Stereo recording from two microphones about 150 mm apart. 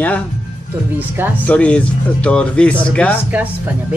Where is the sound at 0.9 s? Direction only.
15° right (ahead or behind).